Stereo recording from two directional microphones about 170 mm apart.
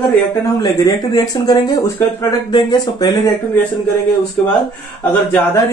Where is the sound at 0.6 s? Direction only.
20° left (ahead or behind).